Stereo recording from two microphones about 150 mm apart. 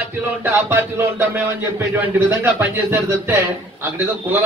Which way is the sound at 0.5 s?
15° right (ahead or behind).